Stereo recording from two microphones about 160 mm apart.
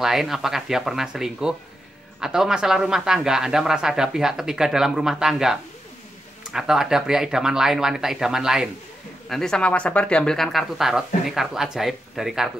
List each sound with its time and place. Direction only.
0.0 s a man's voice: centre (ahead or behind)